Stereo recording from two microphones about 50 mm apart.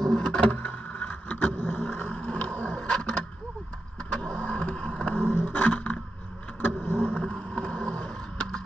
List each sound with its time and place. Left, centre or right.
0.1 s vehicle: centre
0.7 s vehicle: left
2.1 s vehicle: centre
5.1 s vehicle: left
6.6 s vehicle: left
7.3 s skateboard: centre